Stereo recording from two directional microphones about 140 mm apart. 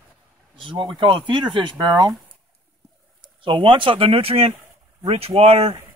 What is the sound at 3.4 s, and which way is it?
Speech, 35° right (ahead or behind).